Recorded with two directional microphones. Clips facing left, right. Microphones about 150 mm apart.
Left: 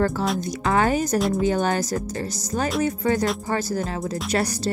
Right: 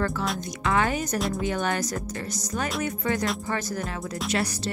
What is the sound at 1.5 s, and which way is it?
Speech, 30° left (ahead or behind).